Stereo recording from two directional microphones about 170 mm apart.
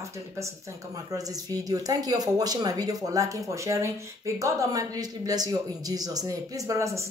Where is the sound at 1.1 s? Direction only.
20° right (ahead or behind).